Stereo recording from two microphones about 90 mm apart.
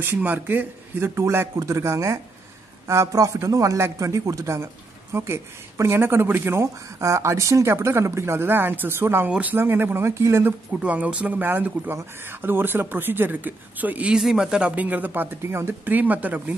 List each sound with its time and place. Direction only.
0.0 s speech: 20° right (ahead or behind)
10.7 s speech: 15° right (ahead or behind)